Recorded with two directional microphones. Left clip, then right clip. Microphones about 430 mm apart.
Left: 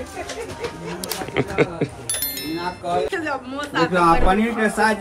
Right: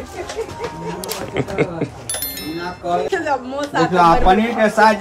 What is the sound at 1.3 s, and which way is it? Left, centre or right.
Speech, centre.